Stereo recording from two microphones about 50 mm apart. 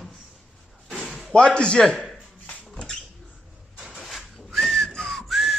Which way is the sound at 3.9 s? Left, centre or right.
Centre.